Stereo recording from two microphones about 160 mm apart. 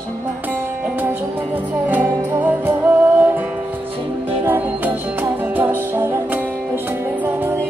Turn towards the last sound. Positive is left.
turn(degrees=-10)  # may be behind; listen again after turning